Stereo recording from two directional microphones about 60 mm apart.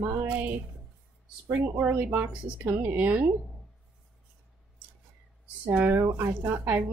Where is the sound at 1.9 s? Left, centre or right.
Right.